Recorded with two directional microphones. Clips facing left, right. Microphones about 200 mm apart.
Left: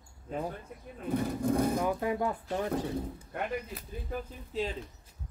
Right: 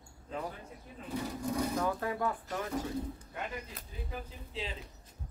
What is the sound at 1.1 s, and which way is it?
Speech, 55° left (ahead or behind).